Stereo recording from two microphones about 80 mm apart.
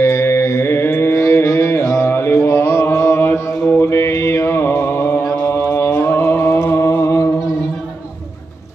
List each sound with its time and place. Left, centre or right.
0.0 s mantra: left
3.6 s mantra: left
3.9 s mantra: left